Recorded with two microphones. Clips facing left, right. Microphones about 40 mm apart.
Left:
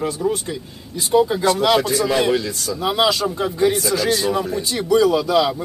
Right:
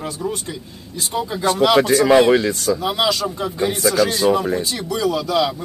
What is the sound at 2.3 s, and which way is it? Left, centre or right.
Speech, right.